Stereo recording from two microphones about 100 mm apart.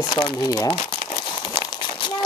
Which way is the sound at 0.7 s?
85° left.